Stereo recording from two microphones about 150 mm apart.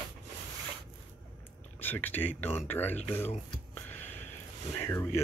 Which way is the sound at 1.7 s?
10° left (ahead or behind).